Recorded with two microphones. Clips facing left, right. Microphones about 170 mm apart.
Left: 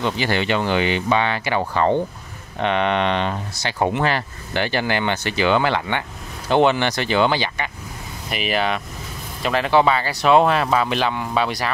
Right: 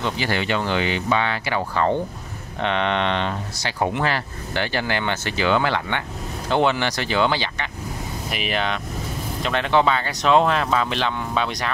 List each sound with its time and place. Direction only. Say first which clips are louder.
0.0 s speech: left 3 dB; 20° left (ahead or behind); by 11.7 s 5° left (ahead or behind)